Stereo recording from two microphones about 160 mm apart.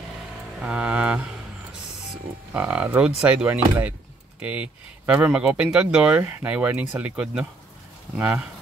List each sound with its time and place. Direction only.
0.6 s music: 10° right (ahead or behind)
2.5 s speech: 10° right (ahead or behind)